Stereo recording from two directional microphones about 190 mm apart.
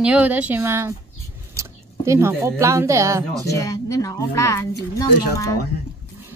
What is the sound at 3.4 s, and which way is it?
A woman's voice, 15° left (ahead or behind).